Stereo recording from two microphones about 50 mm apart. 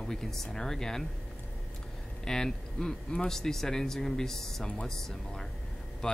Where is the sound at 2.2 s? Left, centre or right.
Centre.